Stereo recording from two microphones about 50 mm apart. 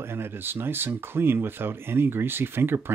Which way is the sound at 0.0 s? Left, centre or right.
Right.